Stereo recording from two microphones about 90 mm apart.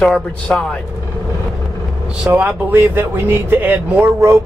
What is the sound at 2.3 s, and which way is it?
Speech, 20° right (ahead or behind).